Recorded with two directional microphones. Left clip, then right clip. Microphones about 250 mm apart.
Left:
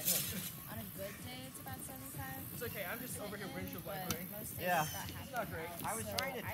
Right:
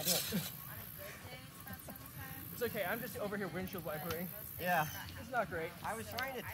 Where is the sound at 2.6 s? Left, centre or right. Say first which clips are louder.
Right 6 dB; right.